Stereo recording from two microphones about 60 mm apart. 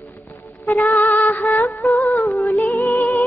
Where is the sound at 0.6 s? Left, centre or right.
Left.